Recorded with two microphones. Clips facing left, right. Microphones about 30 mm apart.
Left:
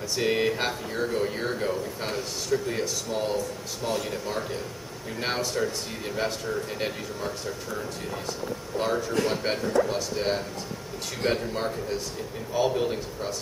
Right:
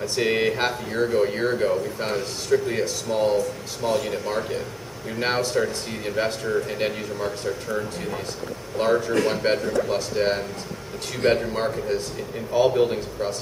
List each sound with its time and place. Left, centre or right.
0.0 s speech: centre
11.4 s speech: centre